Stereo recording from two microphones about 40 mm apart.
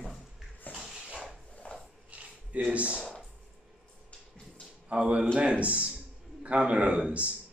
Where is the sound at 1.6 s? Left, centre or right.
Left.